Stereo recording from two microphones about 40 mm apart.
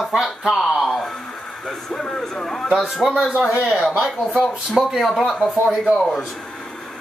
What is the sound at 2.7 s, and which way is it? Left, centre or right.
Speech, centre.